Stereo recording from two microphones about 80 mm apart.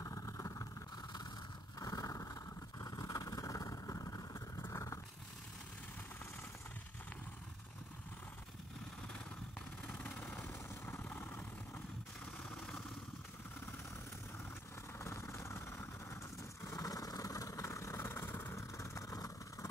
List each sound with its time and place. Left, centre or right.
0.0 s vehicle: left
1.8 s vehicle: left
4.6 s a sound: left
9.8 s vehicle: centre
15.0 s vehicle: left
16.6 s vehicle: left